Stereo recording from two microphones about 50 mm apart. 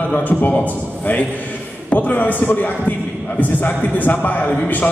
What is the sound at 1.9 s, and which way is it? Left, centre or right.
A man's voice, left.